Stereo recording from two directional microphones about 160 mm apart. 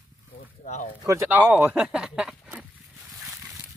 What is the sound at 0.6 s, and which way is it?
Speech, 50° left (ahead or behind).